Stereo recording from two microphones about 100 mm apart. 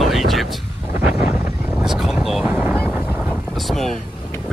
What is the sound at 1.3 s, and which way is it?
Vehicle, 20° right (ahead or behind).